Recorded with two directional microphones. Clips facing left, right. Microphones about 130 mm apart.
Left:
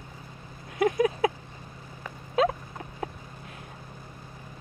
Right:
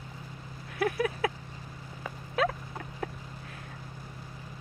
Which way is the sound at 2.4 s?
20° left (ahead or behind).